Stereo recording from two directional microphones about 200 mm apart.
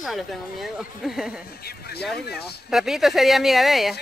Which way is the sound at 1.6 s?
50° left (ahead or behind).